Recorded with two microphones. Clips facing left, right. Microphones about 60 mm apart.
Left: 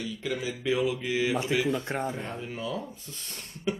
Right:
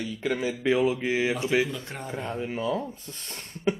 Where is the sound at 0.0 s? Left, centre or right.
Right.